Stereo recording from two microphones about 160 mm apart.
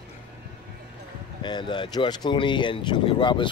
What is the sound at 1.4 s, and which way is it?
Speech, 30° left (ahead or behind).